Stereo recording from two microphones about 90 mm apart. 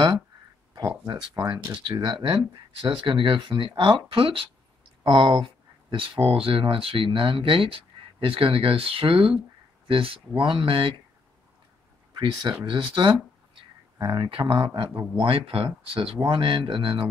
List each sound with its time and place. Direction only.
1.0 s speech: 50° right (ahead or behind)
3.0 s speech: 65° right (ahead or behind)
5.0 s speech: 70° right (ahead or behind)
12.1 s speech: 60° right (ahead or behind)